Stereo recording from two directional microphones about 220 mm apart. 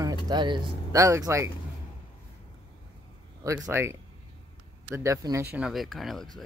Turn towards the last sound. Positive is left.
turn(degrees=0)  # may be behind; listen again after turning